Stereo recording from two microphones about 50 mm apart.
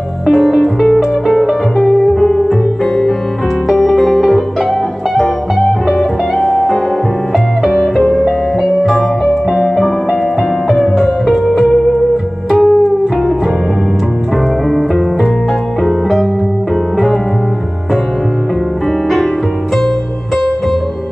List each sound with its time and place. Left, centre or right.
0.3 s music: centre
7.3 s music: centre
8.0 s music: centre
8.8 s music: centre
14.7 s music: centre